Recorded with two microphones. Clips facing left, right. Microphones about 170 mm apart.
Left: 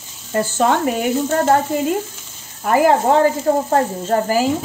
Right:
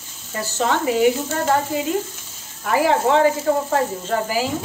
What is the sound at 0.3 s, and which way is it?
Speech, 50° left (ahead or behind).